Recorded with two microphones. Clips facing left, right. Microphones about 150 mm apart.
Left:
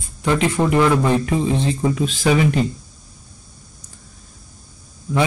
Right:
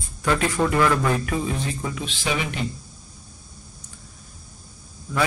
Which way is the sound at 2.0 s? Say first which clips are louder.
Left 10 dB; 40° left (ahead or behind).